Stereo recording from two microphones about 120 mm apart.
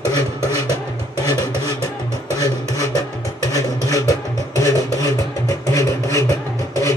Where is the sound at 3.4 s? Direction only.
30° left (ahead or behind).